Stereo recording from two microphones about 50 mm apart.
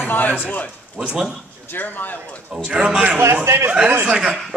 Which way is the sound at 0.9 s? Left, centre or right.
Centre.